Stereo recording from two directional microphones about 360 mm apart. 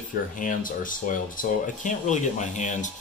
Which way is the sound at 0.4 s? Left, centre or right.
Left.